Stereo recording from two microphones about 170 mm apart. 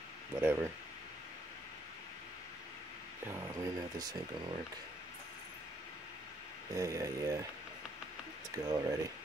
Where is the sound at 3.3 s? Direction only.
20° right (ahead or behind).